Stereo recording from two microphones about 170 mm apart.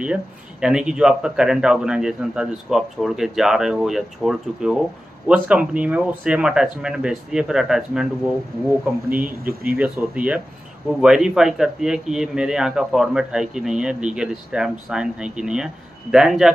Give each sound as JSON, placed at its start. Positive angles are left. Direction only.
{"t": 0.0, "sound": "speech", "side_deg": -5}
{"t": 9.2, "sound": "speech", "side_deg": -60}
{"t": 9.8, "sound": "speech", "side_deg": -5}